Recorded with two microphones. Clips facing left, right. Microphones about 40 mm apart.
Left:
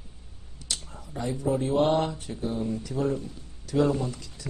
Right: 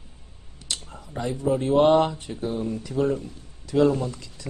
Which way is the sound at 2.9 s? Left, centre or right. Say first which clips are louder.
Right 7 dB; centre.